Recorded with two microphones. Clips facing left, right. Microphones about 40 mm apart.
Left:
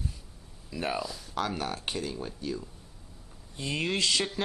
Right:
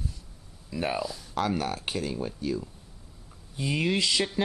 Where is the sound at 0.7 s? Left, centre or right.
Centre.